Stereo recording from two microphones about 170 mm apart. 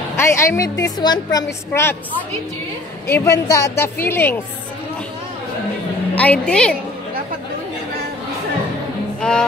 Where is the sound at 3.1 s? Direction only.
15° left (ahead or behind).